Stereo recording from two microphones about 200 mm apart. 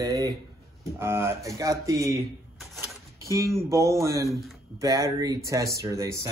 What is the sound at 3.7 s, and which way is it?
Speech, 15° right (ahead or behind).